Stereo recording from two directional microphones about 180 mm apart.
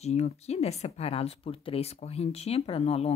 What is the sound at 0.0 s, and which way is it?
Speech, 35° left (ahead or behind).